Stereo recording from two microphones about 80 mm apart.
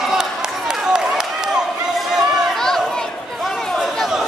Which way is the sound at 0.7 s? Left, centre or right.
Centre.